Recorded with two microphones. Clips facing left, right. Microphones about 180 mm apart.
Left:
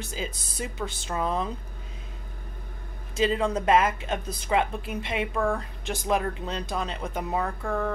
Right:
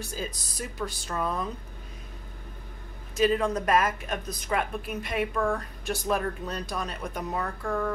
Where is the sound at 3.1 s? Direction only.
25° left (ahead or behind).